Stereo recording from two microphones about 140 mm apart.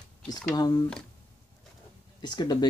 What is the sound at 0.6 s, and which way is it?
Speech, 30° left (ahead or behind).